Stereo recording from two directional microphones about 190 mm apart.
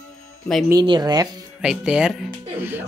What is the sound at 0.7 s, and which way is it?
Speech, 25° right (ahead or behind).